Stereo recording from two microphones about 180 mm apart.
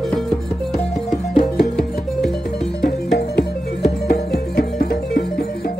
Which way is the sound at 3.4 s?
60° left (ahead or behind).